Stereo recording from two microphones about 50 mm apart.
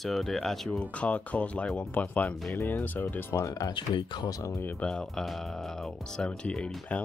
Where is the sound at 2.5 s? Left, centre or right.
Left.